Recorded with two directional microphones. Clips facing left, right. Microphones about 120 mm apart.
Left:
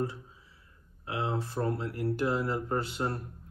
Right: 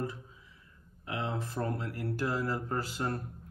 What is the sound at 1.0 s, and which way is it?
Speech, 35° left (ahead or behind).